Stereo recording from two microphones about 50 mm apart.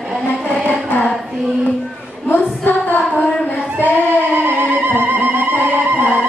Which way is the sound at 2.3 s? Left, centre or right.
Left.